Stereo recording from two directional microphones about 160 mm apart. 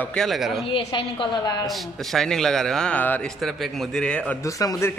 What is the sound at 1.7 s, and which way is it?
A man's voice, centre (ahead or behind).